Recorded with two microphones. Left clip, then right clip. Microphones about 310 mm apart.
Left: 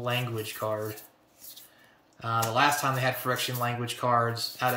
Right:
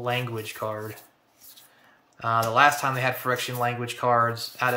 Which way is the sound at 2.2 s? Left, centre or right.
Centre.